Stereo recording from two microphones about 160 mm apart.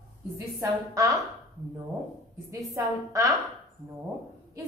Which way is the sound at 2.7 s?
20° right (ahead or behind).